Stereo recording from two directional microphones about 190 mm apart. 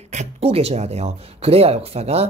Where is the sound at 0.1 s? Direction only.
35° right (ahead or behind).